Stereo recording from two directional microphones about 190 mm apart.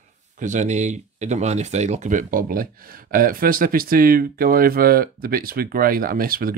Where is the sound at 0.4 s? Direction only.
40° right (ahead or behind).